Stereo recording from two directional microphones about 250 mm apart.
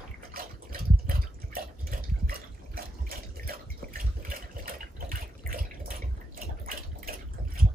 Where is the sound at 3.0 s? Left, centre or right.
Right.